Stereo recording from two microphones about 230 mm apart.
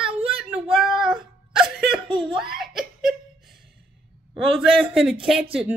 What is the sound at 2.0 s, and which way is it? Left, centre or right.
Whimper, right.